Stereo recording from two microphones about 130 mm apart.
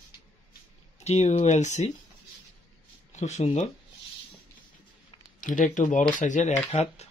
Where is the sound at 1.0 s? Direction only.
60° left (ahead or behind).